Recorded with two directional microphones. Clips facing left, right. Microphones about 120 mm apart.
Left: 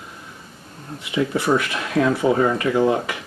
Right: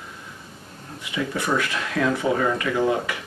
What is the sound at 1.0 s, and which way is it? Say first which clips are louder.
A man's voice: left 5 dB; 20° left (ahead or behind).